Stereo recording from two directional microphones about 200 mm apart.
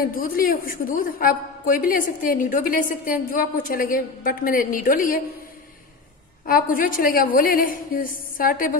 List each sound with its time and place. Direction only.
0.0 s a woman's voice: 45° left (ahead or behind)
6.4 s a woman's voice: 45° left (ahead or behind)